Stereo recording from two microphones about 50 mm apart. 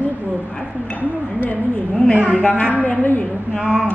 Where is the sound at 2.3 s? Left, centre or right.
Left.